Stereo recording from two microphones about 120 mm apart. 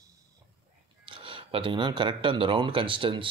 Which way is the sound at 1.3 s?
45° right (ahead or behind).